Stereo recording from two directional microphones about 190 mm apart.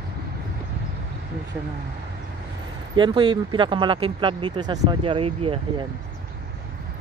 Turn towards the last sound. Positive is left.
turn(degrees=-30)  # may be behind; listen again after turning